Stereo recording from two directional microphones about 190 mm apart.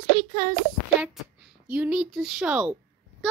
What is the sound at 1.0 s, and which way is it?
A child's voice, 5° right (ahead or behind).